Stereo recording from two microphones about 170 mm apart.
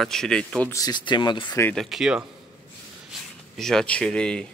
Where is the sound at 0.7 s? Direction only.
25° left (ahead or behind).